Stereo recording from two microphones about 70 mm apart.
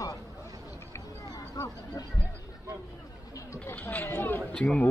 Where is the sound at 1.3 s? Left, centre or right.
Left.